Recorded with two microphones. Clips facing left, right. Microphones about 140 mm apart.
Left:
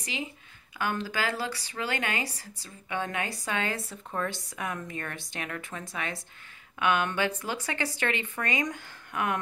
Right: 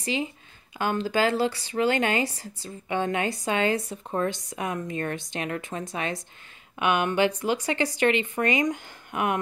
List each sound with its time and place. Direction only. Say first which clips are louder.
0.7 s speech: right 6 dB; 25° right (ahead or behind)